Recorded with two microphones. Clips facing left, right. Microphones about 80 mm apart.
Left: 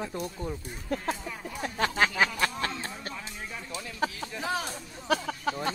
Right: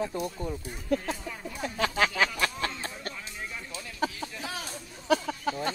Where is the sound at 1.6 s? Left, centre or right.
Left.